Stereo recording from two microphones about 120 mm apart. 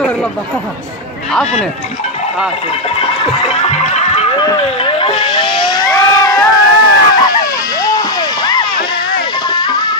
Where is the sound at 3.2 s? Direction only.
50° left (ahead or behind).